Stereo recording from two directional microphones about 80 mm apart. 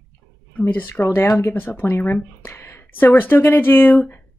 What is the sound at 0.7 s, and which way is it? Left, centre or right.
Speech, left.